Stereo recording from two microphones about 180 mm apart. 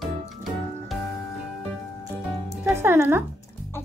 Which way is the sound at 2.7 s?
15° right (ahead or behind).